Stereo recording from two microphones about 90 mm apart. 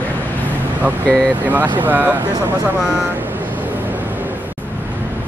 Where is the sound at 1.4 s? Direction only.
20° right (ahead or behind).